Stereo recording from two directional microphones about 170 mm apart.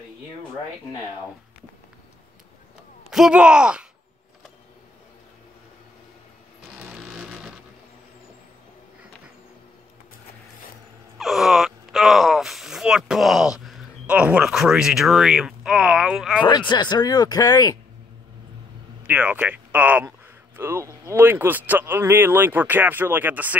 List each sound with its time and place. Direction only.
3.1 s speech: 5° right (ahead or behind)
6.7 s a sound: 5° right (ahead or behind)
11.1 s speech: centre (ahead or behind)
16.4 s speech: 25° left (ahead or behind)
19.0 s speech: 10° right (ahead or behind)